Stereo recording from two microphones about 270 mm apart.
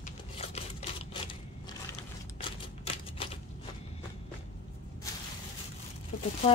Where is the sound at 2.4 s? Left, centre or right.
Left.